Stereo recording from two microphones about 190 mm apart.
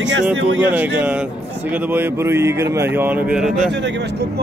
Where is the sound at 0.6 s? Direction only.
10° right (ahead or behind).